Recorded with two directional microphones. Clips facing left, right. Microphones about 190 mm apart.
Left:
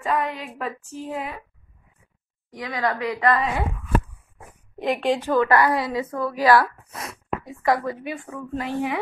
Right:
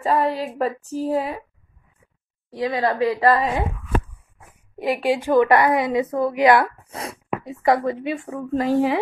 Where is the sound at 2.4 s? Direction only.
30° right (ahead or behind).